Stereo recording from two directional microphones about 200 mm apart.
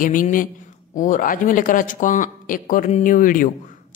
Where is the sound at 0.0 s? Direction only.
40° left (ahead or behind).